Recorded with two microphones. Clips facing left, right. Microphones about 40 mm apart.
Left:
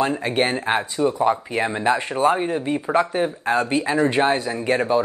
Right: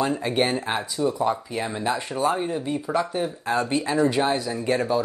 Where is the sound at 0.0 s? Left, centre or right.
Left.